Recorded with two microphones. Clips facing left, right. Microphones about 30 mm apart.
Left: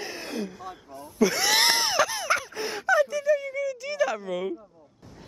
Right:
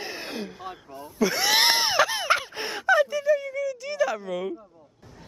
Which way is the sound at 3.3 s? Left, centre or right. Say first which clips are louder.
Right 1 dB; centre.